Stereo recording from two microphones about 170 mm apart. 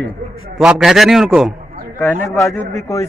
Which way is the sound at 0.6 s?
5° right (ahead or behind).